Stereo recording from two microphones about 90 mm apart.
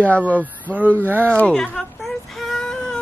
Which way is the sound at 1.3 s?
10° left (ahead or behind).